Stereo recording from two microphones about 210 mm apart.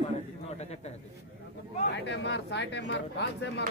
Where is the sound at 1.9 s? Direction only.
55° left (ahead or behind).